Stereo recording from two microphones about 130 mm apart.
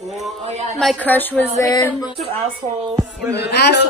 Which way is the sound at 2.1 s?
50° right (ahead or behind).